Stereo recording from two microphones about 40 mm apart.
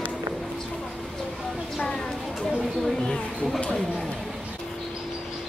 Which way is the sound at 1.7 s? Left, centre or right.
Centre.